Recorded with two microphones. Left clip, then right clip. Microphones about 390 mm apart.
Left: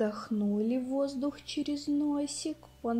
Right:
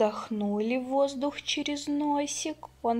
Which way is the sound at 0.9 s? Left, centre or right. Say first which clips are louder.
Right 5 dB; centre.